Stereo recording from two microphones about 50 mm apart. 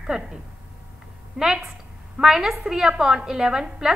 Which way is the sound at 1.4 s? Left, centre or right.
Centre.